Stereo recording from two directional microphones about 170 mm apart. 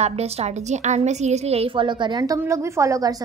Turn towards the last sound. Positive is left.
turn(degrees=-20)  # may be behind; listen again after turning